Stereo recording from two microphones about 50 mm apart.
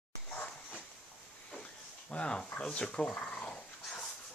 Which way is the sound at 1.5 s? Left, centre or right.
Centre.